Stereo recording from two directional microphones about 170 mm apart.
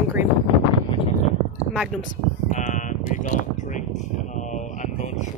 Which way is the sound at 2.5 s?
50° left (ahead or behind).